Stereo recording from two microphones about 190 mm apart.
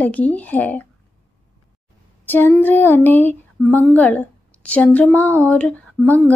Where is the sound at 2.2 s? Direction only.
10° left (ahead or behind).